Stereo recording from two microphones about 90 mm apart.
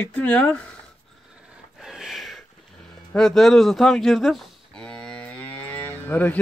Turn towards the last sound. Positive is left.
turn(degrees=20)  # may be behind; listen again after turning